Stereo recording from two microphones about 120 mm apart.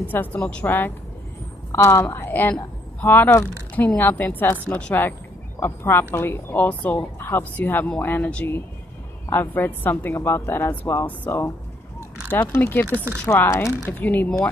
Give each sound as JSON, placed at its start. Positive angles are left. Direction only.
{"t": 0.1, "sound": "a woman's voice", "side_deg": 15}